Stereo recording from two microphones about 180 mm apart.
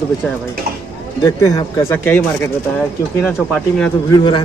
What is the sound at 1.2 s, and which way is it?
Speech, 15° left (ahead or behind).